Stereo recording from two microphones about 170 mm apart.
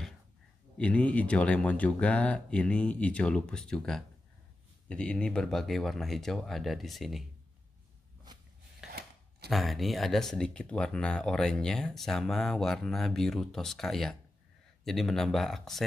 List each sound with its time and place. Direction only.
0.7 s speech: 10° left (ahead or behind)
8.3 s a sound: 25° right (ahead or behind)
8.8 s scissors: 5° right (ahead or behind)
9.5 s speech: centre (ahead or behind)